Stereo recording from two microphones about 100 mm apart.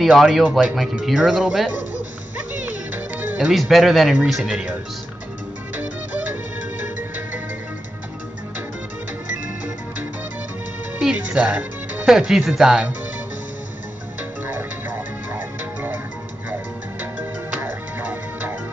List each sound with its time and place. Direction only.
0.0 s speech: centre (ahead or behind)
0.5 s speech: 10° right (ahead or behind)
2.3 s music: 15° right (ahead or behind)
3.3 s speech: 5° right (ahead or behind)
6.8 s music: 20° right (ahead or behind)
11.0 s speech: 10° right (ahead or behind)
14.4 s music: 15° right (ahead or behind)
17.0 s music: 20° right (ahead or behind)